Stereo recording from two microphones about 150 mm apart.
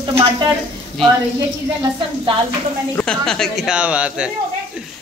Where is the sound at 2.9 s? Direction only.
5° left (ahead or behind).